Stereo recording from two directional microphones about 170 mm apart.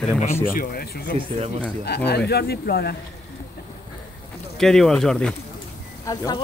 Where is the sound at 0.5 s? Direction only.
55° left (ahead or behind).